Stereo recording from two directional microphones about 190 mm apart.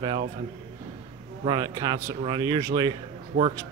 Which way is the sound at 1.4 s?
25° right (ahead or behind).